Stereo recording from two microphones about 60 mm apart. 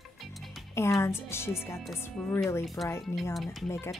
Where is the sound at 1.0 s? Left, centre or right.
Left.